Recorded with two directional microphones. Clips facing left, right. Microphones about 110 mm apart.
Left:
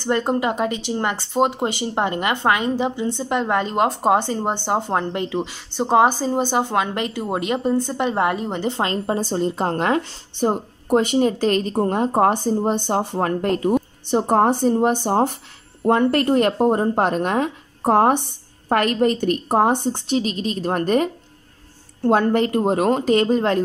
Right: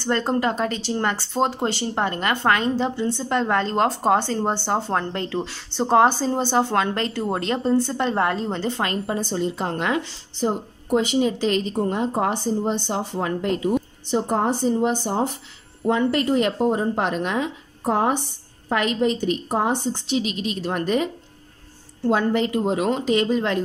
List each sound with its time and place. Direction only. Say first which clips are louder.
0.0 s a woman's voice: left 1 dB; 15° left (ahead or behind); by 10.0 s 40° left (ahead or behind)
10.3 s a woman's voice: left 3 dB; 50° left (ahead or behind)